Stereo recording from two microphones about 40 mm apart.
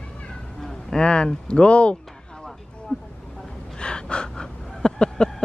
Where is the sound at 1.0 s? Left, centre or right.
Left.